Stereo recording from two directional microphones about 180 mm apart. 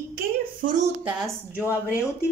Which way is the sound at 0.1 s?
50° right (ahead or behind).